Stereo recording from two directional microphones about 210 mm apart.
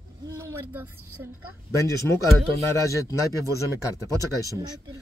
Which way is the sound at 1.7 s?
15° left (ahead or behind).